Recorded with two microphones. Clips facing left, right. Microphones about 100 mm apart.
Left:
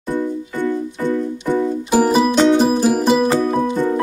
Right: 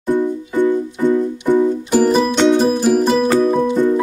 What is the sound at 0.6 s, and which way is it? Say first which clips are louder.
Music: right 5 dB; 15° right (ahead or behind).